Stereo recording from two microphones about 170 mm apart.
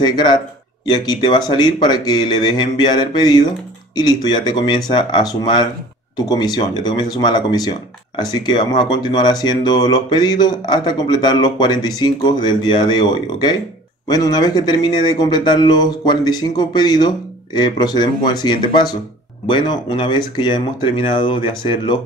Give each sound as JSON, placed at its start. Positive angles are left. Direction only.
{"t": 0.8, "sound": "speech", "side_deg": 25}